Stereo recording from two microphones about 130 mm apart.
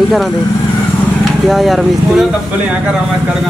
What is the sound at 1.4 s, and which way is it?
Speech, centre (ahead or behind).